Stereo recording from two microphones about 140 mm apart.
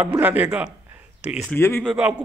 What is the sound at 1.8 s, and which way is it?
Speech, 5° right (ahead or behind).